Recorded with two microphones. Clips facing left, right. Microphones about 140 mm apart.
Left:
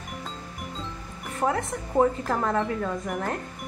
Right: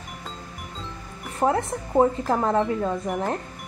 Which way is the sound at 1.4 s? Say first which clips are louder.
Right 4 dB; 30° right (ahead or behind).